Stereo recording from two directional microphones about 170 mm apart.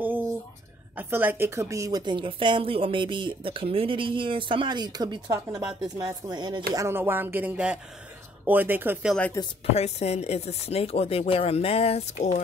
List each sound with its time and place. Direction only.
0.0 s a sound: 10° right (ahead or behind)
0.9 s a woman's voice: 10° right (ahead or behind)
9.4 s speech: 20° left (ahead or behind)
9.8 s speech: 40° left (ahead or behind)